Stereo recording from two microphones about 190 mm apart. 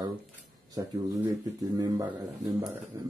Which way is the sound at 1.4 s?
20° right (ahead or behind).